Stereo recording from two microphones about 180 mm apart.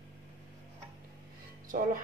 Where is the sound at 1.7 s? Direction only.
45° right (ahead or behind).